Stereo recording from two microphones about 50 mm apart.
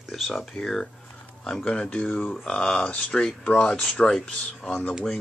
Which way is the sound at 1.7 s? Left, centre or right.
Left.